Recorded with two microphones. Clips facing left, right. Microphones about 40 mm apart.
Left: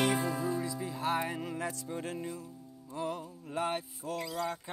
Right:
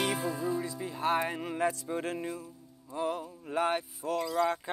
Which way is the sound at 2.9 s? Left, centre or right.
Centre.